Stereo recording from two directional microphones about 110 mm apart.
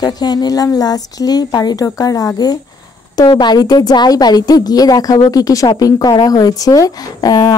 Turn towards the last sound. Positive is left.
turn(degrees=40)  # may be behind; listen again after turning